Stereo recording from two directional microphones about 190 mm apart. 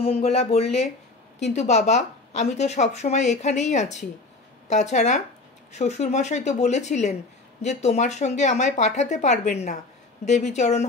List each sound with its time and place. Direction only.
0.0 s a woman's voice: 30° left (ahead or behind)